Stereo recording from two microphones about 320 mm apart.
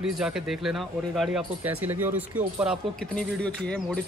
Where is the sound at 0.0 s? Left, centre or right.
Centre.